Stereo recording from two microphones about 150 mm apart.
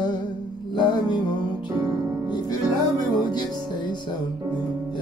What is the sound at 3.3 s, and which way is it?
Music, 30° left (ahead or behind).